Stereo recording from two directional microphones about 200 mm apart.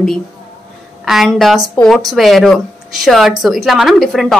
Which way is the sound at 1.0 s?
Centre (ahead or behind).